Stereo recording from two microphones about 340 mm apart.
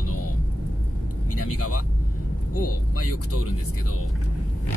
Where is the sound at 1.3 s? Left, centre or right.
Left.